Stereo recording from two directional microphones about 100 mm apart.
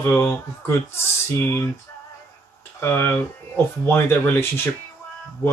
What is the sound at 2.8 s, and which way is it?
Speech, 25° left (ahead or behind).